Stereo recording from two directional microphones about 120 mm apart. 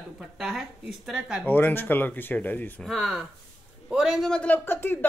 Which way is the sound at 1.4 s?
15° left (ahead or behind).